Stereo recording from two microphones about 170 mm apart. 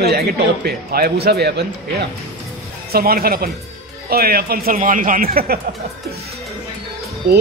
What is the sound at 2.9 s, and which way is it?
Speech, 60° right (ahead or behind).